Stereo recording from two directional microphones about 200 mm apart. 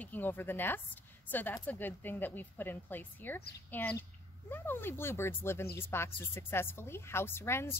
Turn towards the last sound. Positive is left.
turn(degrees=10)  # may be behind; listen again after turning